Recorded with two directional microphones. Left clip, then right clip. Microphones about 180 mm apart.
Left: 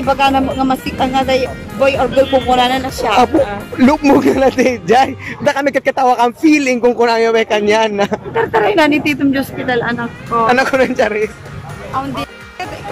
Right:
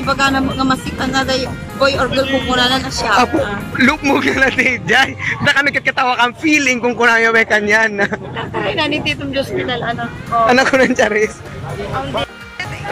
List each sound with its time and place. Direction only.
0.0 s speech: 5° left (ahead or behind)
3.7 s a man's voice: 30° left (ahead or behind); by 8.2 s 15° left (ahead or behind)
8.4 s a woman's voice: 75° left (ahead or behind)
10.4 s a man's voice: 5° left (ahead or behind)